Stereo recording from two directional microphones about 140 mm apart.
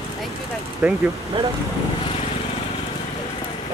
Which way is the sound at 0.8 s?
5° right (ahead or behind).